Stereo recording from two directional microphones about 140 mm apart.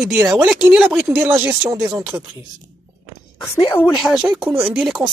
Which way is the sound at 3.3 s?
20° left (ahead or behind).